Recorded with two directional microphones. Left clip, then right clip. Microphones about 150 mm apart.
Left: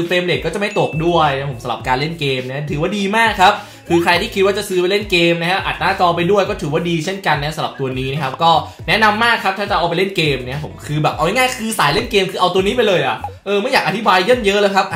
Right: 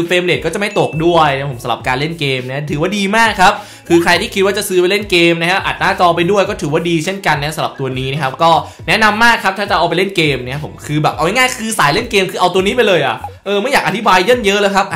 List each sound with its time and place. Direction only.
0.1 s speech: 35° right (ahead or behind)